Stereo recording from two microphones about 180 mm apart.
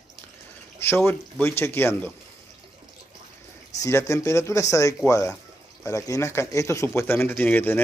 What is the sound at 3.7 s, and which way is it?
Speech, 15° left (ahead or behind).